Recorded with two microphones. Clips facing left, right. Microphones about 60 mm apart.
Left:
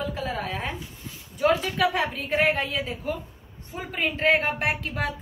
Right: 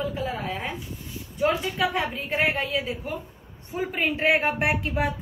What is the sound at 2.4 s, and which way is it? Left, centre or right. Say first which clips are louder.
Speech: left 1 dB; centre.